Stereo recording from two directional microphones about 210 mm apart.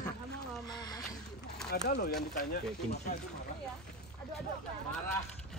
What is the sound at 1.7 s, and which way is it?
Speech, 50° left (ahead or behind).